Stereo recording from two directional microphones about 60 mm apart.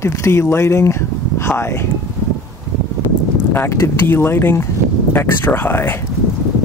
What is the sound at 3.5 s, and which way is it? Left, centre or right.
Speech, left.